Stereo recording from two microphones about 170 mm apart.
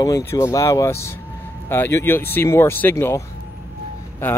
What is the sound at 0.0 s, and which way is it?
Speech, 20° left (ahead or behind).